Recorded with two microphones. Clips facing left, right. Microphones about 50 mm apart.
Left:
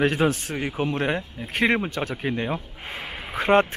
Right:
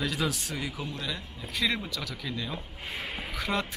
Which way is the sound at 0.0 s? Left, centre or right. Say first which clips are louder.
Left 9 dB; left.